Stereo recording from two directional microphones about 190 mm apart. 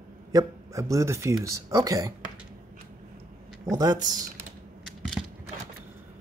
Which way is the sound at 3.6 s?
20° right (ahead or behind).